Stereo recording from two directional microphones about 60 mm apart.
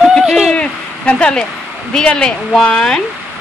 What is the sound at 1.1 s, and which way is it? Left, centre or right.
Speech, centre.